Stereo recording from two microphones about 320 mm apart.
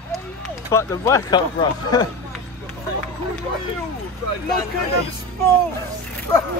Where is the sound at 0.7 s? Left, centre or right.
Centre.